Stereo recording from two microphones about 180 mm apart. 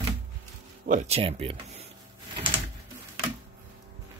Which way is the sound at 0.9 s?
35° right (ahead or behind).